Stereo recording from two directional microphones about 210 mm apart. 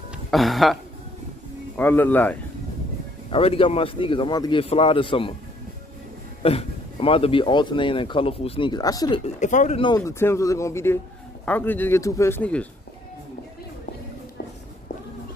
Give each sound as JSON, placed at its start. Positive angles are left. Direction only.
{"t": 0.1, "sound": "speech", "side_deg": 0}
{"t": 1.8, "sound": "speech", "side_deg": 10}
{"t": 3.3, "sound": "speech", "side_deg": 25}
{"t": 6.4, "sound": "speech", "side_deg": 25}
{"t": 9.2, "sound": "speech", "side_deg": 35}
{"t": 9.8, "sound": "speech", "side_deg": 20}